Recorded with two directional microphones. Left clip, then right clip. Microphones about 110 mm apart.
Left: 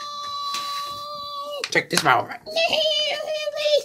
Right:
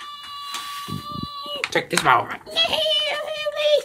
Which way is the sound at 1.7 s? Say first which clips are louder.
Right 1 dB; 20° left (ahead or behind).